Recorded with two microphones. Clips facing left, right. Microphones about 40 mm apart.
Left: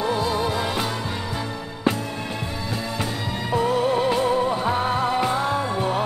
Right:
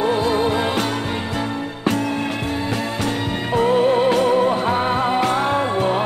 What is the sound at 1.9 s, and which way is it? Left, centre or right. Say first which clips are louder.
Music: right 4 dB; right.